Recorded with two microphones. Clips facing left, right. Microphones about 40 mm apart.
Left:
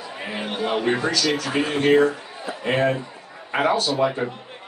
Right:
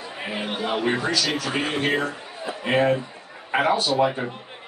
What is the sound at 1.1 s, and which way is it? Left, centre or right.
A man's voice, centre.